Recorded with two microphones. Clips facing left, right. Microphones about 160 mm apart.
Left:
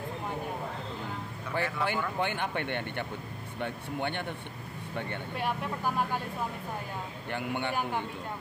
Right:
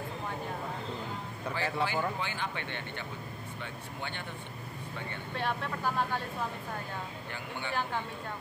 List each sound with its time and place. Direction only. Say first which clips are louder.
1.5 s speech: left 1 dB; 55° left (ahead or behind)
5.3 s speech: even; 10° left (ahead or behind)
7.2 s speech: left 7 dB; 60° left (ahead or behind)